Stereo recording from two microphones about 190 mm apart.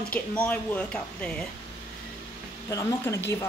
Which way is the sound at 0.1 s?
5° left (ahead or behind).